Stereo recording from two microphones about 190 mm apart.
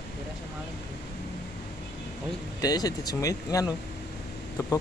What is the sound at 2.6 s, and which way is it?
Speech, 20° left (ahead or behind).